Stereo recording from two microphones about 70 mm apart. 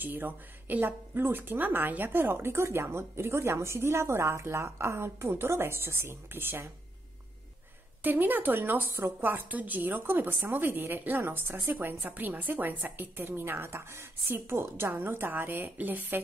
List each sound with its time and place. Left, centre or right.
0.0 s a woman's voice: right
8.0 s a woman's voice: right